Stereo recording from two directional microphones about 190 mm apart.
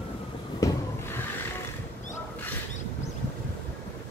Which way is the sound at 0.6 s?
20° left (ahead or behind).